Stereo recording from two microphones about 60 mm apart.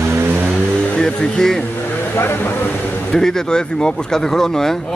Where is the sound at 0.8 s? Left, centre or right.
Centre.